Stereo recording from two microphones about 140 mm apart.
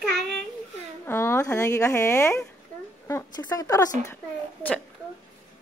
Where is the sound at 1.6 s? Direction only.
20° left (ahead or behind).